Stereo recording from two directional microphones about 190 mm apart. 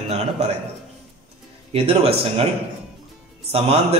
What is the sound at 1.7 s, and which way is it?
Speech, 30° right (ahead or behind).